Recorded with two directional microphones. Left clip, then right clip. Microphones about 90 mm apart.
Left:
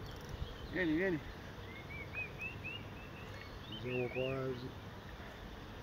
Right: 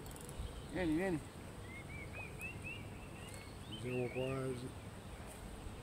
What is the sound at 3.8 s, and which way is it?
Speech, 15° right (ahead or behind).